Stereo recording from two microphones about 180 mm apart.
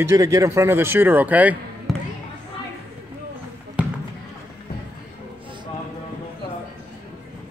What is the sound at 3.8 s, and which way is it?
Basketball bounce, 5° right (ahead or behind).